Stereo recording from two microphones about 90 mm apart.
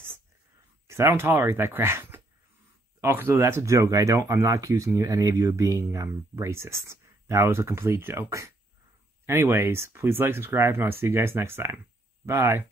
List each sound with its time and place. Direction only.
0.8 s speech: 30° right (ahead or behind)